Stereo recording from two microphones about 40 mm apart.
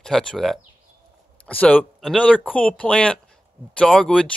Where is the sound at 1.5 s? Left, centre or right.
Left.